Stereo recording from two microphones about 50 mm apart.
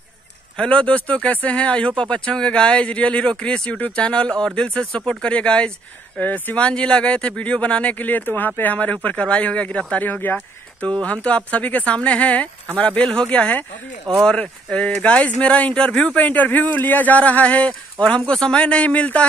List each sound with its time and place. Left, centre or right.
0.7 s speech: left
6.1 s speech: left